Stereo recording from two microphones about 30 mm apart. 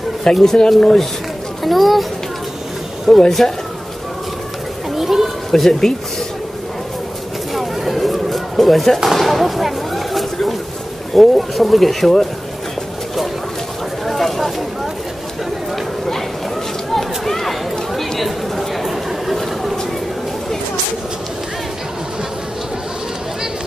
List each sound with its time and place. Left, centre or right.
0.2 s speech: centre
1.6 s speech: centre
3.1 s speech: centre
4.9 s children playing: centre
5.7 s speech: centre
7.5 s a sound: centre
11.1 s speech: centre
14.0 s a sound: centre
16.9 s a sound: centre
18.2 s chatter: centre